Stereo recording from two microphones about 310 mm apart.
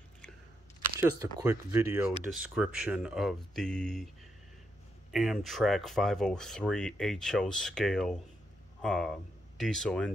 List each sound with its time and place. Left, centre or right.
1.0 s speech: centre
5.1 s speech: centre